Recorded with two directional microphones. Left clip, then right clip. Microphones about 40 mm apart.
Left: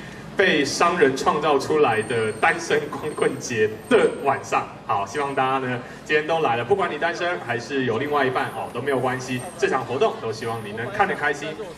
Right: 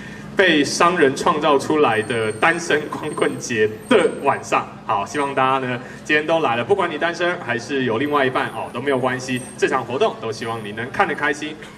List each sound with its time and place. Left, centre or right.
0.4 s a man's voice: right